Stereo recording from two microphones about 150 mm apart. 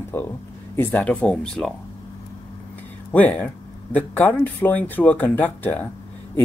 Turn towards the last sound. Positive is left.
turn(degrees=10)  # may be behind; listen again after turning